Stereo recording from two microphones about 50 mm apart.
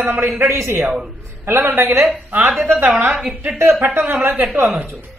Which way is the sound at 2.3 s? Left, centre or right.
Right.